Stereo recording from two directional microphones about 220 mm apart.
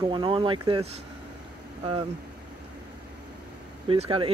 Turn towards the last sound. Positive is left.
turn(degrees=-25)  # may be behind; listen again after turning